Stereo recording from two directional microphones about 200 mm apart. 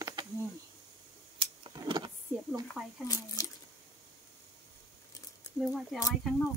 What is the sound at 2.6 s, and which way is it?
Speech, 15° left (ahead or behind).